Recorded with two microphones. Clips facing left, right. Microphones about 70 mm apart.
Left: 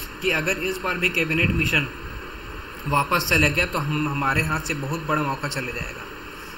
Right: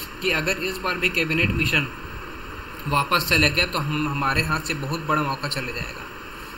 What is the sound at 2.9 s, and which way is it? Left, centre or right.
A man's voice, centre.